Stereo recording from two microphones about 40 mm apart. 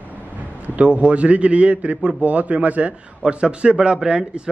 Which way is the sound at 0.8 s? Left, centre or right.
Right.